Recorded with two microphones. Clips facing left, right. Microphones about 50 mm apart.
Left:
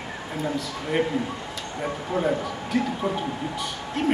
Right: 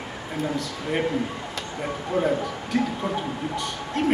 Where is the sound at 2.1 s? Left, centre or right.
Centre.